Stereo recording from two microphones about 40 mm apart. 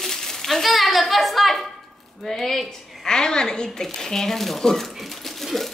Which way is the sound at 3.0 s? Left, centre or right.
Centre.